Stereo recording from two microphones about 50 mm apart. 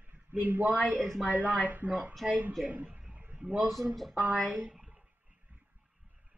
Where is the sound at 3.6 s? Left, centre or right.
Right.